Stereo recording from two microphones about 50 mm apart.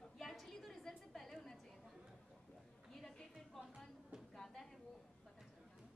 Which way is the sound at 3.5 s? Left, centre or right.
Centre.